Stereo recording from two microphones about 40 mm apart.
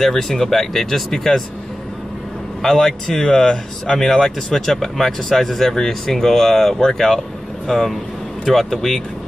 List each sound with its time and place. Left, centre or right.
0.0 s speech: centre
2.6 s speech: centre